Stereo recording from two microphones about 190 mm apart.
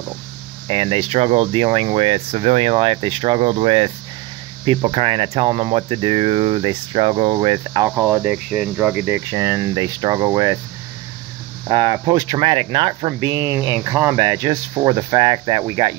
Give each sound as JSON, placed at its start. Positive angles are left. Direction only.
{"t": 0.7, "sound": "speech", "side_deg": -30}
{"t": 7.9, "sound": "speech", "side_deg": -10}
{"t": 11.7, "sound": "speech", "side_deg": -20}